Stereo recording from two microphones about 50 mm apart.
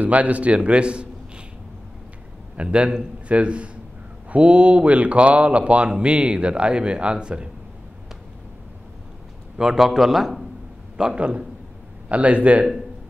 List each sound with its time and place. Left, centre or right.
0.0 s speech: right
2.5 s speech: right
9.6 s a man's voice: centre
11.1 s speech: right